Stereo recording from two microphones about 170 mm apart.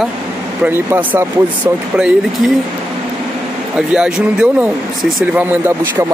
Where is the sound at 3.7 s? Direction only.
5° right (ahead or behind).